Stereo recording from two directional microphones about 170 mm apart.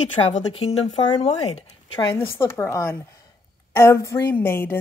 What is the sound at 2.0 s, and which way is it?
Speech, 15° left (ahead or behind).